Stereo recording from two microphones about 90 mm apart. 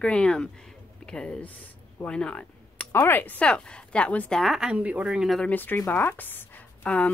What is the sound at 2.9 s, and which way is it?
Speech, 25° left (ahead or behind).